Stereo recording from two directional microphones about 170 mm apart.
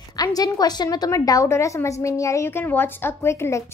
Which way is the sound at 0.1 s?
20° left (ahead or behind).